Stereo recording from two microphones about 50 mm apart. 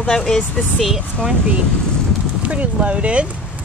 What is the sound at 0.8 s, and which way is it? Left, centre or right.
Speech, centre.